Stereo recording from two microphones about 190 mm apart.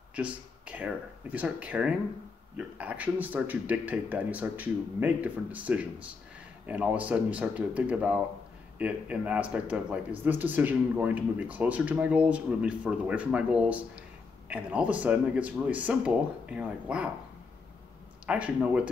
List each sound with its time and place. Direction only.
0.1 s speech: 5° right (ahead or behind)
18.2 s speech: 5° right (ahead or behind)